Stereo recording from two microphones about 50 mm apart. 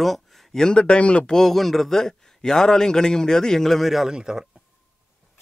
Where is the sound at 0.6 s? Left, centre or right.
Centre.